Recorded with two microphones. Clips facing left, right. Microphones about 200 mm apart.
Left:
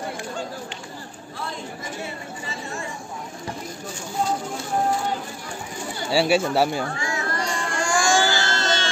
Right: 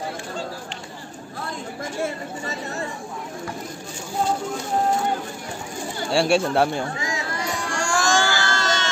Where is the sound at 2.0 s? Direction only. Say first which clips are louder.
Right 6 dB; 45° right (ahead or behind).